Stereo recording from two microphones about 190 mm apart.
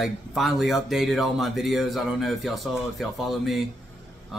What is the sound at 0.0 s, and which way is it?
Speech, centre (ahead or behind).